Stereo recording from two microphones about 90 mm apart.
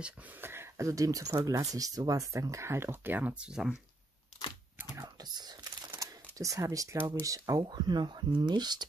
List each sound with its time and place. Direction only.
0.4 s speech: 25° right (ahead or behind); by 3.8 s 10° right (ahead or behind)
5.0 s whispering: 50° right (ahead or behind)
5.9 s typing: 35° right (ahead or behind)
7.2 s speech: 40° right (ahead or behind)
7.6 s speech: 55° right (ahead or behind)